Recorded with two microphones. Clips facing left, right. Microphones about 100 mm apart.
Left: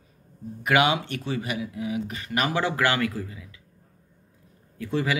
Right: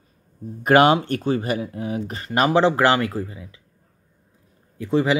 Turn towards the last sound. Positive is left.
turn(degrees=-20)  # may be behind; listen again after turning